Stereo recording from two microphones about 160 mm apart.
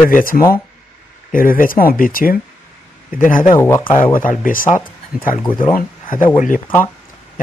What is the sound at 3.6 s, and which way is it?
Speech, 15° left (ahead or behind).